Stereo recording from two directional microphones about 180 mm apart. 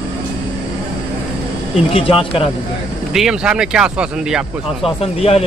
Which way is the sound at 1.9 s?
30° left (ahead or behind).